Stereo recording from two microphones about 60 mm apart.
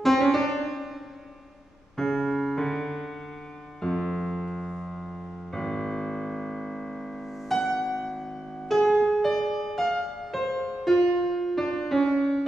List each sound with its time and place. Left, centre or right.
0.0 s music: centre
2.0 s music: centre
3.8 s piano: centre
5.5 s music: centre